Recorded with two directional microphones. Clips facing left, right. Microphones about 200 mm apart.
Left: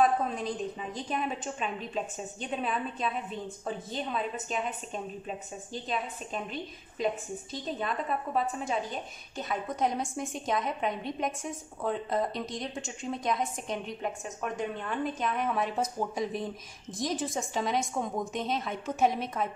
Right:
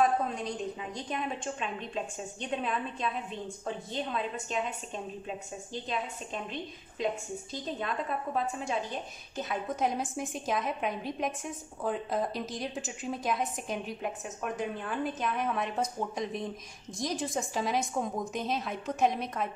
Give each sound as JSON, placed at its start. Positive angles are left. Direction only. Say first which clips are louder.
{"t": 0.0, "sound": "a woman's voice", "louder": "left 1 dB", "side_deg": 0}
{"t": 8.3, "sound": "a woman's voice", "louder": "left 1 dB", "side_deg": 0}